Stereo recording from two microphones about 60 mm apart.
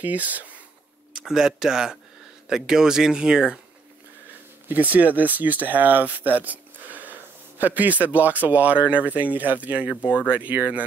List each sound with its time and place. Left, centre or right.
0.0 s speech: right
1.1 s speech: centre
4.6 s speech: right